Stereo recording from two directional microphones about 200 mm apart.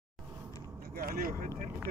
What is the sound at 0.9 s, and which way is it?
Vehicle, 45° right (ahead or behind).